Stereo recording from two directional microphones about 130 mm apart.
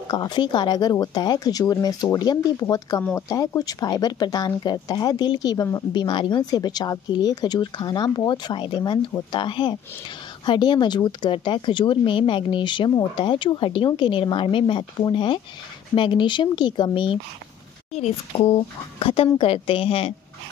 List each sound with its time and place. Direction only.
0.1 s speech: 30° left (ahead or behind)
17.9 s speech: 55° left (ahead or behind)